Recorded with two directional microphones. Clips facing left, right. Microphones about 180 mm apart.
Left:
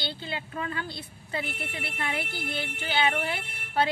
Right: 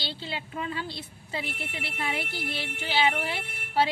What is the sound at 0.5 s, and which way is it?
A woman's voice, 25° right (ahead or behind).